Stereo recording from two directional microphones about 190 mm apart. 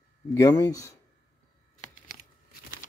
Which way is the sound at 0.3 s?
15° left (ahead or behind).